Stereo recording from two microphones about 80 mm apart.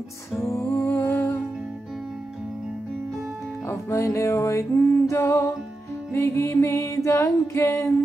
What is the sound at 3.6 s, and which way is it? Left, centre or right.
Music, left.